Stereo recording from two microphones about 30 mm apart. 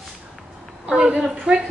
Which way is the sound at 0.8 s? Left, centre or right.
Right.